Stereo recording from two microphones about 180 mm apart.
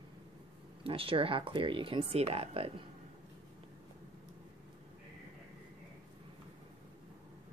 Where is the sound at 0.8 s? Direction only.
30° right (ahead or behind).